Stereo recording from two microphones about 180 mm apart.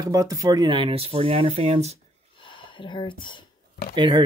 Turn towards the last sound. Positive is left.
turn(degrees=-25)  # may be behind; listen again after turning